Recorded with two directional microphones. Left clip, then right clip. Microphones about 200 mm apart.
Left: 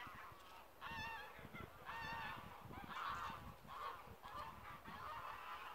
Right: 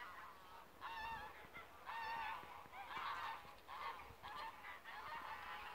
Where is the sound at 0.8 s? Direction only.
35° left (ahead or behind).